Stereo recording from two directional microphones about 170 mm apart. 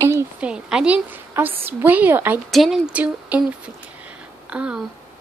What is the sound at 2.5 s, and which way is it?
A woman's voice, centre (ahead or behind).